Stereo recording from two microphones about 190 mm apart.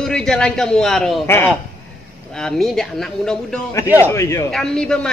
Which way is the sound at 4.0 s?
15° left (ahead or behind).